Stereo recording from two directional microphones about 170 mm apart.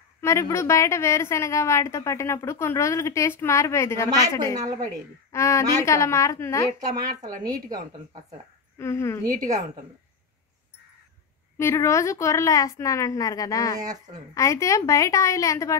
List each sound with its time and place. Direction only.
0.2 s a woman's voice: 15° left (ahead or behind)
4.6 s a woman's voice: 20° right (ahead or behind)
5.3 s a woman's voice: 15° left (ahead or behind)
7.1 s speech: 50° right (ahead or behind)
7.4 s a woman's voice: 20° right (ahead or behind)
8.7 s a woman's voice: 15° left (ahead or behind)
9.2 s a woman's voice: 55° right (ahead or behind)
11.5 s a woman's voice: 15° left (ahead or behind)